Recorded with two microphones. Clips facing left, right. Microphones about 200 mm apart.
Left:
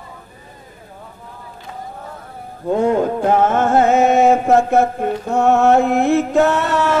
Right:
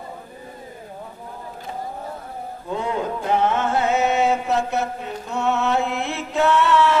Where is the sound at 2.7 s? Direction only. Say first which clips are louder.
Left 9 dB; 50° left (ahead or behind).